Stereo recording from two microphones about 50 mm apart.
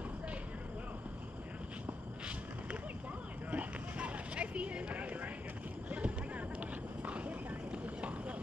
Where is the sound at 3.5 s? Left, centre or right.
Right.